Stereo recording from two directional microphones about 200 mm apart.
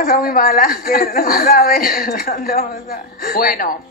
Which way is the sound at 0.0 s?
45° left (ahead or behind).